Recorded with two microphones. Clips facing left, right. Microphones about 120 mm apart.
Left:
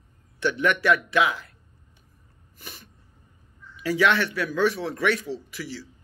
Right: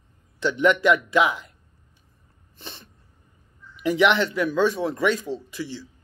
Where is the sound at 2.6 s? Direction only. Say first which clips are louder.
Right 3 dB; 25° right (ahead or behind).